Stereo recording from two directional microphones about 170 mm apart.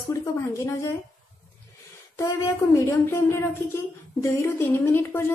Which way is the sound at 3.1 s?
15° left (ahead or behind).